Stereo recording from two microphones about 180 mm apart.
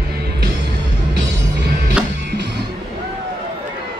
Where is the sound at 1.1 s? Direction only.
70° right (ahead or behind).